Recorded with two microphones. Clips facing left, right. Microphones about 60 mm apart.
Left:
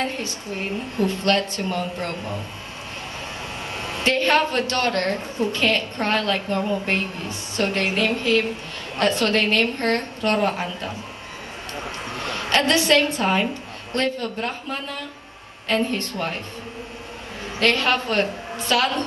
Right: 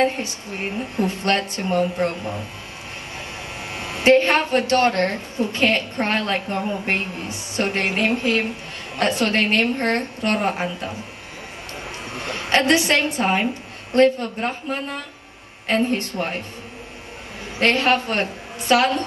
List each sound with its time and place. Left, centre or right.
0.0 s a woman's voice: right
3.7 s a woman's voice: right
12.2 s a woman's voice: right
17.6 s a woman's voice: right